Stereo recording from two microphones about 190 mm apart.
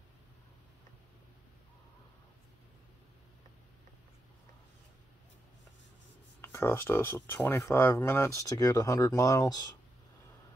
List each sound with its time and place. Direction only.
6.4 s speech: 15° left (ahead or behind)